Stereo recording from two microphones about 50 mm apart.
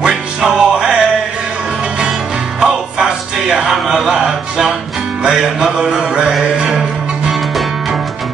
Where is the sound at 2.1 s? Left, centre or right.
Centre.